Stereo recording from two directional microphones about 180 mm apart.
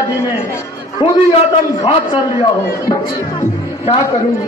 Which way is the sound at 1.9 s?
30° left (ahead or behind).